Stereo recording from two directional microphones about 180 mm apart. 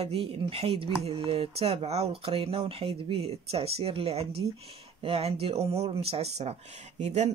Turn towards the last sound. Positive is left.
turn(degrees=-40)  # may be behind; listen again after turning